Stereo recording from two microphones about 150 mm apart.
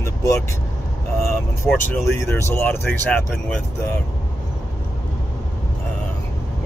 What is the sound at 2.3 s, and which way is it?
Speech, 15° left (ahead or behind).